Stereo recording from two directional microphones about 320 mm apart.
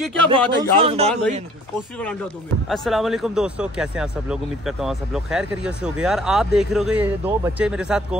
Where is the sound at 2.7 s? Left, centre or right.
Centre.